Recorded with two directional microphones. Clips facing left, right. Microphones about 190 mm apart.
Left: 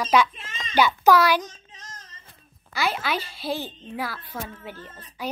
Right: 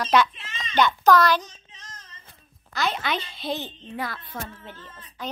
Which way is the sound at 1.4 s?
45° left (ahead or behind).